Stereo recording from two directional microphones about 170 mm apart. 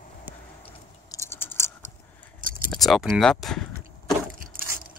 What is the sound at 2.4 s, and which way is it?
Keys jangling, 55° right (ahead or behind).